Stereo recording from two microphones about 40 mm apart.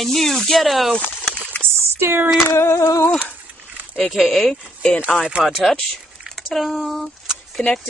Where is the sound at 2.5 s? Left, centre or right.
Left.